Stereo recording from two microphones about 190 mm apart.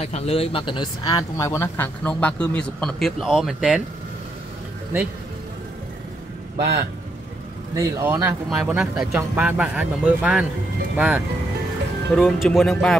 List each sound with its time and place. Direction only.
0.0 s speech: 35° left (ahead or behind); by 3.8 s 5° right (ahead or behind)
6.5 s speech: 35° right (ahead or behind)
7.7 s speech: 15° right (ahead or behind); by 12.9 s 5° left (ahead or behind)